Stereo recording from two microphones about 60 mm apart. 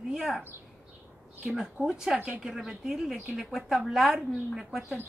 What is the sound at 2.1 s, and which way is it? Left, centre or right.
Speech, right.